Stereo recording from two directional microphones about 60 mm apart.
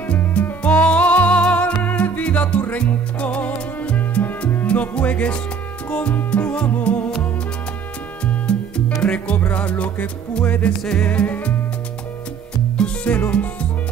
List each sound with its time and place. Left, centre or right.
0.3 s music: left
8.3 s music: centre
12.7 s music: centre
13.1 s music: left